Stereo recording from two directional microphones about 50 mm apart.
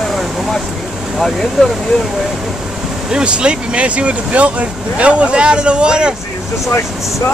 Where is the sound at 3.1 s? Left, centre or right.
Centre.